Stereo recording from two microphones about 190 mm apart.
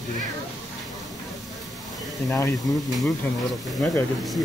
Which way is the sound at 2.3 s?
15° left (ahead or behind).